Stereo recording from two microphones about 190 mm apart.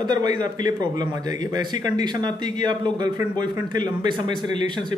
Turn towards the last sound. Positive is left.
turn(degrees=-25)  # may be behind; listen again after turning